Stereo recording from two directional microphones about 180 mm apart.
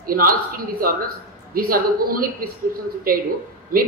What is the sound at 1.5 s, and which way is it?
Speech, 55° right (ahead or behind).